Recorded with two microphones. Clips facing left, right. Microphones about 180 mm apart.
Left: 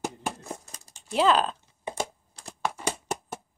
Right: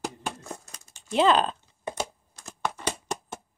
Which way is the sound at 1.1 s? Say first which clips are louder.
Right 1 dB; 5° left (ahead or behind).